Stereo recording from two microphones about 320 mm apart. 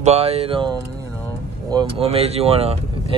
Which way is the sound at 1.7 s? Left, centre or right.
Centre.